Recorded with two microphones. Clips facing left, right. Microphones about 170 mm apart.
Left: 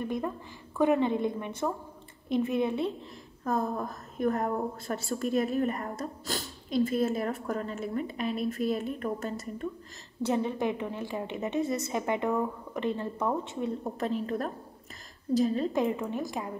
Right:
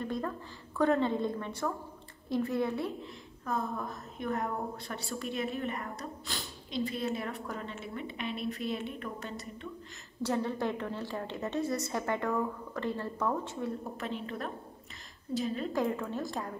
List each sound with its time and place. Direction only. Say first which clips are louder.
0.0 s a woman's voice: left 3 dB; 15° left (ahead or behind)
4.2 s a woman's voice: left 6 dB; 45° left (ahead or behind)
10.2 s a woman's voice: left 3 dB; 15° left (ahead or behind)
13.9 s a woman's voice: left 7 dB; 40° left (ahead or behind)
15.7 s a woman's voice: left 3 dB; 20° left (ahead or behind)